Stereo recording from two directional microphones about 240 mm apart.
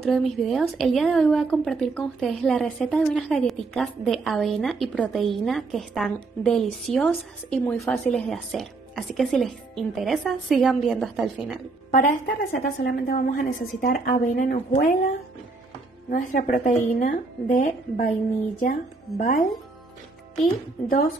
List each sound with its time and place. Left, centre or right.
0.0 s a woman's voice: centre
11.9 s a woman's voice: left